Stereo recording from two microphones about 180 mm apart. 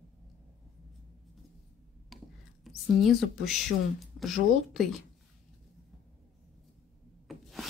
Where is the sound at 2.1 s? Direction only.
Centre (ahead or behind).